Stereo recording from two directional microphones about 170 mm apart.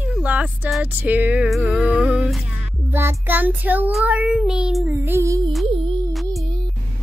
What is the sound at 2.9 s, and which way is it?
Child singing, 15° right (ahead or behind).